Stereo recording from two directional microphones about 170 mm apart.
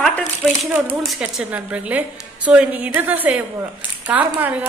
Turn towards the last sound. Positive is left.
turn(degrees=-10)  # may be behind; listen again after turning